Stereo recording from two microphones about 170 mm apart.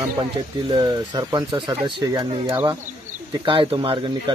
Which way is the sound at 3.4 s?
30° right (ahead or behind).